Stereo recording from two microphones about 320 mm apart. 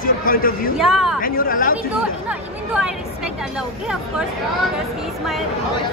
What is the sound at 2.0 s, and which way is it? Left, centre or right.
Speech, centre.